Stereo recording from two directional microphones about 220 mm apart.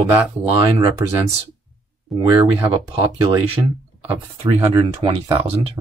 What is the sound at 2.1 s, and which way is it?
Speech, 25° right (ahead or behind).